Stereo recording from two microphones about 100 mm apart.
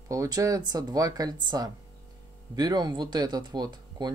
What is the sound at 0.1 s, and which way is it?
Speech, 35° right (ahead or behind).